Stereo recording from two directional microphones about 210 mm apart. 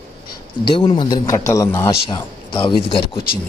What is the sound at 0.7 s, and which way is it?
A man's voice, 25° left (ahead or behind).